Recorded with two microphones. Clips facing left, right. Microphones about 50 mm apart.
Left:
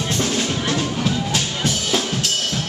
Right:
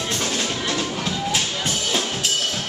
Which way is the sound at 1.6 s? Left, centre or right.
Centre.